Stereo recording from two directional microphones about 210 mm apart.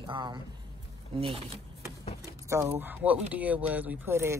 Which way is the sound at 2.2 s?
15° right (ahead or behind).